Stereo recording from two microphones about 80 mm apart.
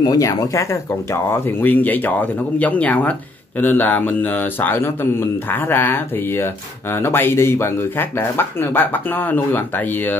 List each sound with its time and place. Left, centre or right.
0.0 s speech: left
1.1 s speech: left